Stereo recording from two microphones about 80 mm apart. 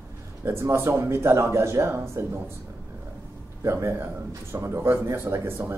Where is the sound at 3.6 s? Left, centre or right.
Right.